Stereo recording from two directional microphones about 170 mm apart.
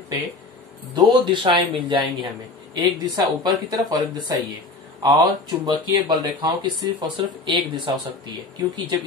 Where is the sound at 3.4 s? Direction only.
25° right (ahead or behind).